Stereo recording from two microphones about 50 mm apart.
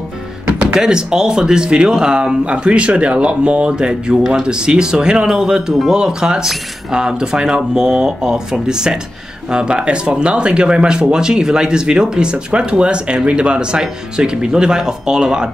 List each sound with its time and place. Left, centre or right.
0.7 s speech: centre